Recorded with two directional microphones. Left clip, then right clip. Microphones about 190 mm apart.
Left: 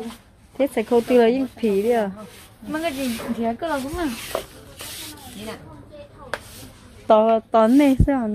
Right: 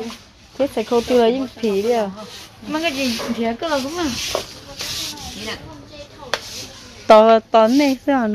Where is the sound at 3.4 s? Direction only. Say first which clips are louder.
Right 3 dB; 20° left (ahead or behind).